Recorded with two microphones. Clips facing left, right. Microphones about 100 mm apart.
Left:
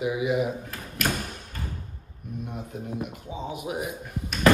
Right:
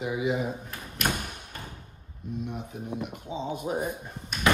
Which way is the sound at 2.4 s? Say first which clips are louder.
Left 1 dB; 50° left (ahead or behind).